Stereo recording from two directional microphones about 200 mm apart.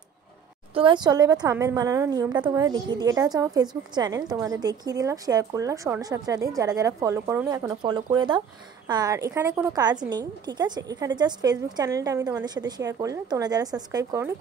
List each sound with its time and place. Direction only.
0.7 s a woman's voice: 25° right (ahead or behind)